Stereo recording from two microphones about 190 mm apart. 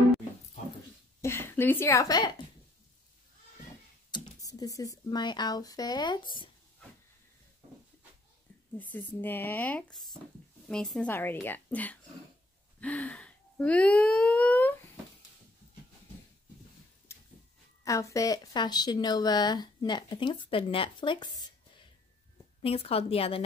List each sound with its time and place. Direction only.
1.2 s a woman's voice: 10° left (ahead or behind)
4.1 s speech: 20° left (ahead or behind)
8.9 s speech: 10° left (ahead or behind)
17.8 s speech: 15° left (ahead or behind)
22.6 s a woman's voice: 30° left (ahead or behind)